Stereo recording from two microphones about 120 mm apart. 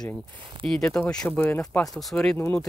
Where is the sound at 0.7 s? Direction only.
5° left (ahead or behind).